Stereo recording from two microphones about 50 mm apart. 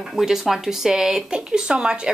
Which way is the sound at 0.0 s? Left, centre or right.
Centre.